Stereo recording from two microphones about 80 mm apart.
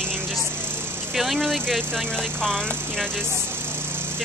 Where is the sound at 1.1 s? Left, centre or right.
Centre.